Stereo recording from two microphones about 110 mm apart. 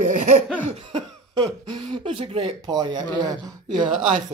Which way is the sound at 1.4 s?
40° right (ahead or behind).